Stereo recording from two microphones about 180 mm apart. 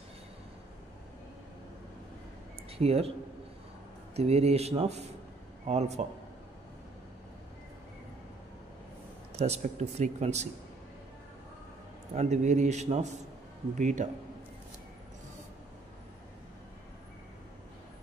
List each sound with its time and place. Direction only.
2.8 s speech: 35° right (ahead or behind)
4.1 s speech: 35° right (ahead or behind)
9.4 s speech: 35° right (ahead or behind)
12.1 s a man's voice: 40° right (ahead or behind)